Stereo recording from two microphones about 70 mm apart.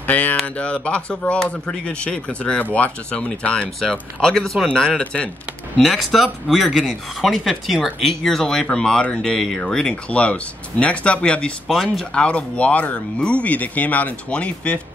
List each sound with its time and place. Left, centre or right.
0.0 s a sound: left
0.6 s speech: centre
5.8 s speech: centre
11.6 s speech: centre
12.1 s speech: centre